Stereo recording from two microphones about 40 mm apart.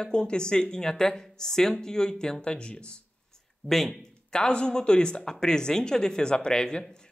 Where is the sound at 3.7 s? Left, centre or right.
Centre.